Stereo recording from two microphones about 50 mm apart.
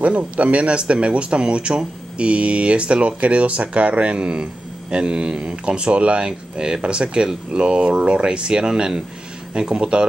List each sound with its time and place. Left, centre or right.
0.0 s speech: right